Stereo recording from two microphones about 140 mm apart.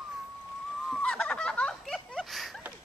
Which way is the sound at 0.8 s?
5° left (ahead or behind).